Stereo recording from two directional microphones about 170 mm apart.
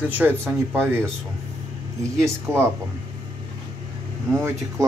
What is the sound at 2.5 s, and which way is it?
Speech, 15° right (ahead or behind).